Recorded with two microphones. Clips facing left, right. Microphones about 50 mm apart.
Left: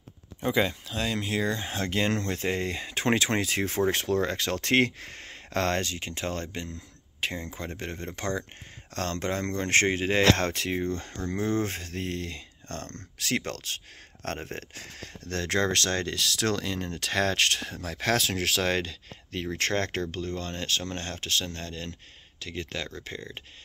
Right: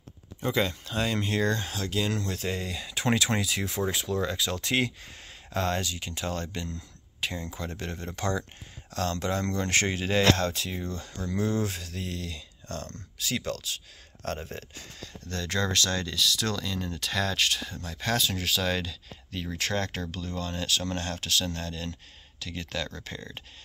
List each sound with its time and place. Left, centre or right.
0.4 s speech: centre
0.8 s speech: centre
1.7 s speech: left
8.9 s speech: left
10.4 s speech: left
17.8 s speech: left
18.8 s speech: left